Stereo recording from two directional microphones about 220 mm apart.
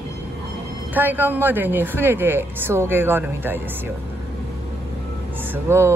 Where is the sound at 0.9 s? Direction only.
10° right (ahead or behind).